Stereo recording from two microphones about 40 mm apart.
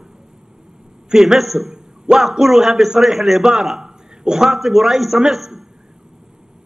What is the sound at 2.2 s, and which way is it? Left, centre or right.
A man's voice, centre.